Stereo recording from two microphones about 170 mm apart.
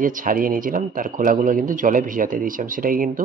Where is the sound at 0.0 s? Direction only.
50° right (ahead or behind).